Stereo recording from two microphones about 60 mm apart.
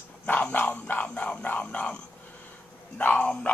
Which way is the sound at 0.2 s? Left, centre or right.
Left.